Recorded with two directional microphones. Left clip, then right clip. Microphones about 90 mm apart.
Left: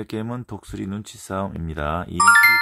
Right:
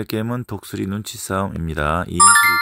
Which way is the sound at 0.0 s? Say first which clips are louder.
Right 5 dB; 35° right (ahead or behind).